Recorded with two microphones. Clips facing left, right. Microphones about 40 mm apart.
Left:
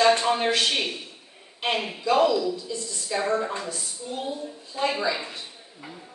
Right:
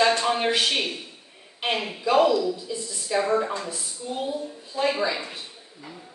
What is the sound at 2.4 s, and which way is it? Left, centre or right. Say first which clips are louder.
Speech: right 1 dB; centre.